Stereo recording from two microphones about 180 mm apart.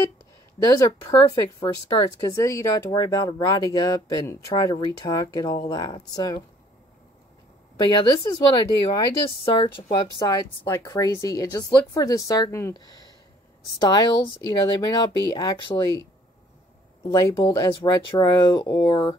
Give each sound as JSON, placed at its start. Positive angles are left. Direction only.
{"t": 0.7, "sound": "speech", "side_deg": 20}
{"t": 7.8, "sound": "speech", "side_deg": 25}